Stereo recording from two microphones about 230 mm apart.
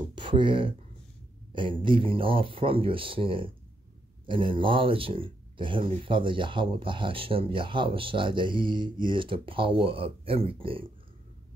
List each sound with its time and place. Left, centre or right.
0.1 s speech: right